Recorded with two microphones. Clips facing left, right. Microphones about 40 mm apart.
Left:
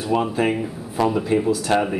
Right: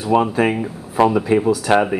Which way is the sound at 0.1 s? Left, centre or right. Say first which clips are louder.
Right 5 dB; centre.